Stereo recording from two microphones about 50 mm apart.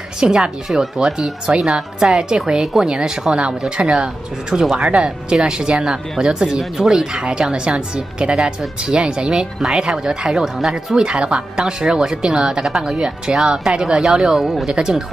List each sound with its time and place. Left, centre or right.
0.4 s speech: centre
2.6 s speech: centre
2.9 s speech: centre
6.6 s speech: centre
7.0 s speech: centre
11.0 s speech: centre
14.4 s speech: centre
14.7 s speech: centre